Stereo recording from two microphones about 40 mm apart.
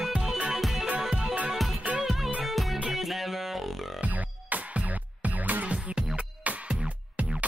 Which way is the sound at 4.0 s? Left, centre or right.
Right.